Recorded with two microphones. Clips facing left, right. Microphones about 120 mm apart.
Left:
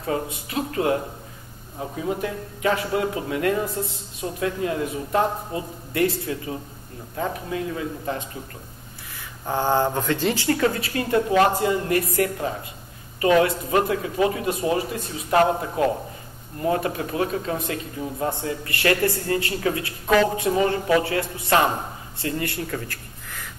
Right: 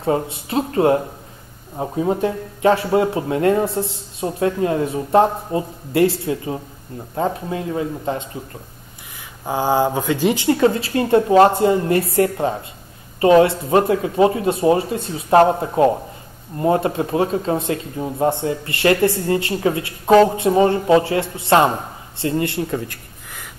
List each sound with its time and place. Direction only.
0.0 s speech: 30° right (ahead or behind)
9.5 s speech: 10° right (ahead or behind)